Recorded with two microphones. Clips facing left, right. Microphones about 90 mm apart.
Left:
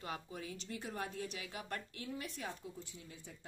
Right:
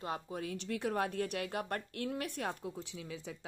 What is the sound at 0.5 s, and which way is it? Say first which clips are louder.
A woman's voice: right 11 dB; 65° right (ahead or behind).